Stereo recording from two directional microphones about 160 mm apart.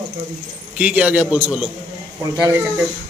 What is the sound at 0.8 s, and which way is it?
Speech, 10° right (ahead or behind).